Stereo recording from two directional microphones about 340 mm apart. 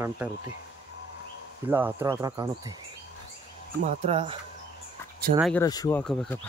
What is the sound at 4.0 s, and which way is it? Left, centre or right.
Speech, centre.